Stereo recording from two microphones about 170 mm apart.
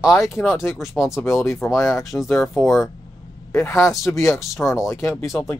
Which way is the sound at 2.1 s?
Centre (ahead or behind).